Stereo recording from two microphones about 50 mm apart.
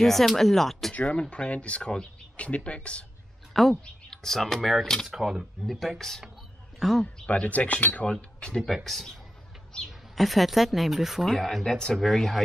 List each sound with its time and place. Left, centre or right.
0.0 s speech: centre
1.3 s speech: left
3.8 s speech: centre
6.8 s a man's voice: centre
7.2 s speech: left
8.1 s speech: centre
8.6 s speech: centre
11.6 s speech: centre